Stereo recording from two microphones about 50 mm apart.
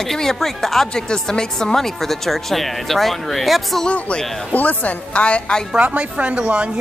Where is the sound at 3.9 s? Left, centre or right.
Left.